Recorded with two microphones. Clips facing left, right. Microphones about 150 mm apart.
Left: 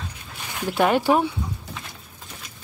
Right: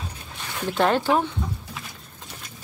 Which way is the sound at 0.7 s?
10° left (ahead or behind).